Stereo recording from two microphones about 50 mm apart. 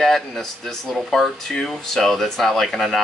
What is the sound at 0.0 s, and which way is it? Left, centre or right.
Speech, centre.